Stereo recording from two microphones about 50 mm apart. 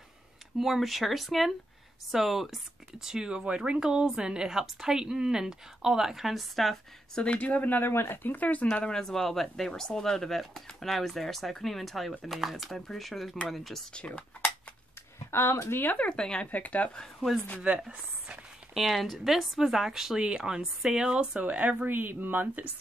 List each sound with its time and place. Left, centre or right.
0.6 s speech: centre
7.3 s speech: left
8.9 s speech: centre
13.9 s speech: left
15.3 s speech: left
16.0 s speech: centre
16.4 s speech: left
17.7 s speech: right
18.8 s speech: centre
20.2 s speech: centre
21.8 s speech: right